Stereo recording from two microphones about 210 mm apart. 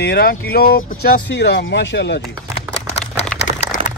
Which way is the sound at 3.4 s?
35° left (ahead or behind).